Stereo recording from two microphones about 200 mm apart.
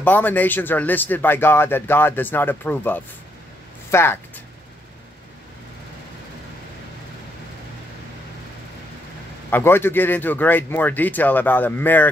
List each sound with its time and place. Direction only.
0.0 s speech: 10° left (ahead or behind)
9.5 s speech: 10° left (ahead or behind)